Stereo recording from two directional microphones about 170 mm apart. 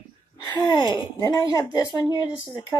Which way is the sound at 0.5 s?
25° left (ahead or behind).